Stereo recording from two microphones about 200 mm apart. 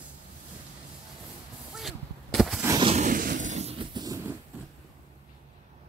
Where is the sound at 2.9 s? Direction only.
40° right (ahead or behind); by 4.3 s 15° right (ahead or behind).